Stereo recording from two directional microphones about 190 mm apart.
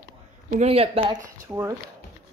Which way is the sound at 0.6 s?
30° right (ahead or behind).